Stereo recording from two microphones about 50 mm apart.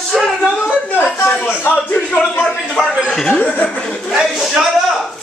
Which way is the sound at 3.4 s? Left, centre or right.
Left.